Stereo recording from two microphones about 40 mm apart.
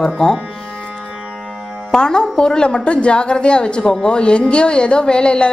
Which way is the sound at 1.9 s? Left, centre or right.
Centre.